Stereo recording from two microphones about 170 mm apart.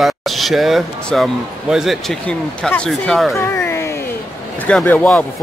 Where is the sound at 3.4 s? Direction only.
15° left (ahead or behind).